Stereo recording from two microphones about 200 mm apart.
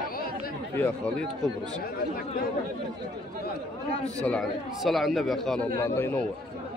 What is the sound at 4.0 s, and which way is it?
Speech, 5° left (ahead or behind).